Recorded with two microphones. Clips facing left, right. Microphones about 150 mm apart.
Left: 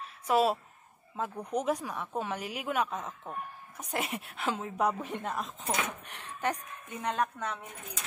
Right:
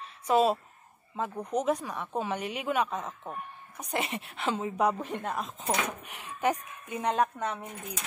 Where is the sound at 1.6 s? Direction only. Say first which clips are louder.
Right 2 dB; 5° left (ahead or behind); by 7.1 s 10° right (ahead or behind).